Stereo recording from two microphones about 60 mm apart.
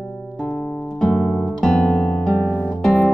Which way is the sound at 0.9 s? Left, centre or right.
Centre.